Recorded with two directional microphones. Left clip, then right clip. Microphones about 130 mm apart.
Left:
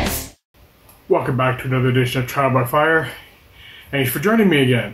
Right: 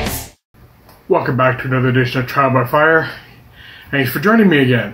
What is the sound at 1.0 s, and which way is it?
Speech, 10° right (ahead or behind).